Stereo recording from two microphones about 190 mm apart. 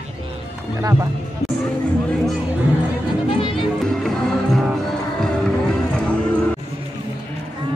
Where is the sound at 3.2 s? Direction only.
25° left (ahead or behind).